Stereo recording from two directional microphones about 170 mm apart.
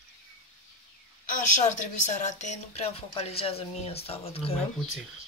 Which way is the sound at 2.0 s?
45° left (ahead or behind).